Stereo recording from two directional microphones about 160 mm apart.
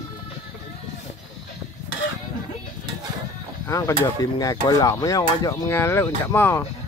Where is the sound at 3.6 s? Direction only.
20° left (ahead or behind).